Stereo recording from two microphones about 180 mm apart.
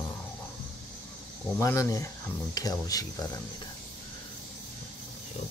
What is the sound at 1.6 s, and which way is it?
Speech, 15° left (ahead or behind).